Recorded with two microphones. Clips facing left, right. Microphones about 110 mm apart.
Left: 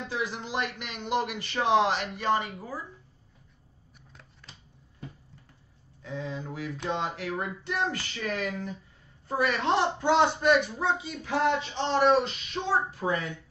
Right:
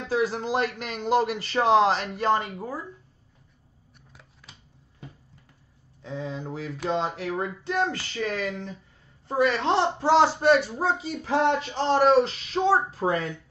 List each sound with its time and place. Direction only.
0.3 s speech: 40° right (ahead or behind)
4.1 s shuffling cards: centre (ahead or behind)
6.0 s speech: 30° right (ahead or behind)